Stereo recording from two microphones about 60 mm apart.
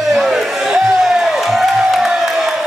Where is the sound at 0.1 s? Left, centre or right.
Centre.